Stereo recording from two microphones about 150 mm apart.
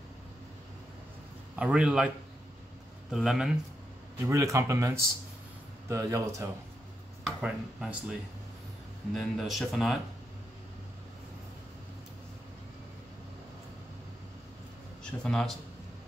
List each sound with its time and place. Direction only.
1.6 s speech: 5° right (ahead or behind)
3.1 s speech: 5° right (ahead or behind)
4.3 s speech: 20° right (ahead or behind)
7.2 s speech: 5° right (ahead or behind)
15.0 s a man's voice: 5° left (ahead or behind)